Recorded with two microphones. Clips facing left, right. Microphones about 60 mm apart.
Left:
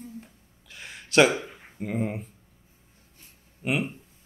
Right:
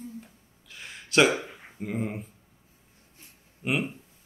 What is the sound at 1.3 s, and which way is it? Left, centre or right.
Speech, right.